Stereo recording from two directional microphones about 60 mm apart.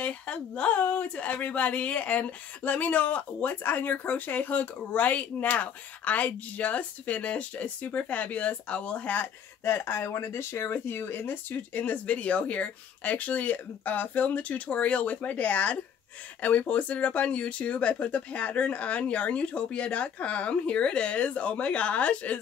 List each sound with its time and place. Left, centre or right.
0.0 s speech: left
9.7 s speech: left